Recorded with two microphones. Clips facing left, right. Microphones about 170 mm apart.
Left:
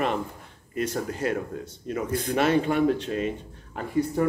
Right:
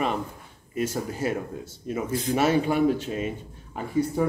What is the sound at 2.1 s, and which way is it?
Speech, 55° left (ahead or behind).